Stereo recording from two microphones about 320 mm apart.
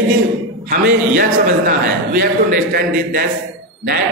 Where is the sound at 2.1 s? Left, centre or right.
Right.